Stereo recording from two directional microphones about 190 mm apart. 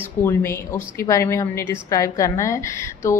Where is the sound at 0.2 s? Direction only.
10° left (ahead or behind).